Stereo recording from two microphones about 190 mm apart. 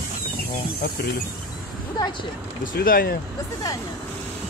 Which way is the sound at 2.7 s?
50° left (ahead or behind).